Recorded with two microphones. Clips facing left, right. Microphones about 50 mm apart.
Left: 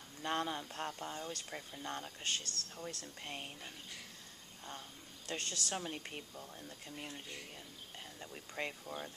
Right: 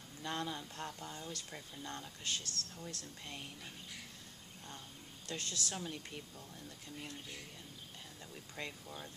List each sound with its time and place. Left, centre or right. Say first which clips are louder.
0.2 s speech: left 3 dB; left
2.2 s speech: even; left
5.3 s speech: left 2 dB; left
8.2 s speech: left 4 dB; left